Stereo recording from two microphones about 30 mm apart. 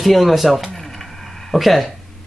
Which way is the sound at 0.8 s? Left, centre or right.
Centre.